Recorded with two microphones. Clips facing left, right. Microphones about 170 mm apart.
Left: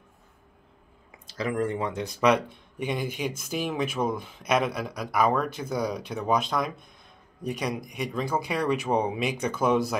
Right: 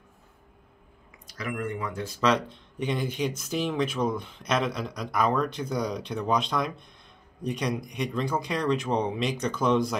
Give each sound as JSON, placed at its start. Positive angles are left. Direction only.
{"t": 1.2, "sound": "speech", "side_deg": 30}